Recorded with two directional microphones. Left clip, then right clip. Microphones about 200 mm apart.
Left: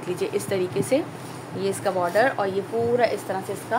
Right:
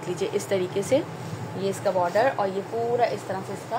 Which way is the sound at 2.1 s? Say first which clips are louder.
Left 1 dB; 30° left (ahead or behind).